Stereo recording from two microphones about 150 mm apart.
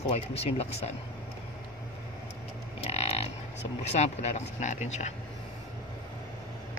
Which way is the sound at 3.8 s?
45° left (ahead or behind).